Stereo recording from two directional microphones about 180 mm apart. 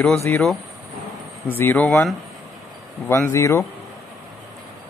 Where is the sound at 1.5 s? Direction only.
10° left (ahead or behind).